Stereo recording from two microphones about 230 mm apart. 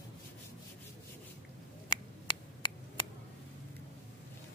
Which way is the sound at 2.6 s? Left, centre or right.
Centre.